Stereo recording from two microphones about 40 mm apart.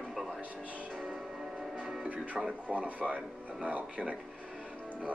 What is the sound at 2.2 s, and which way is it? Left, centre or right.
Speech, right.